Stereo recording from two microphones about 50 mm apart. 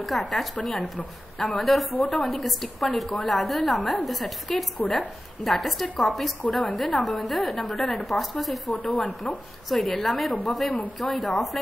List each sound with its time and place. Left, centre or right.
0.0 s a woman's voice: centre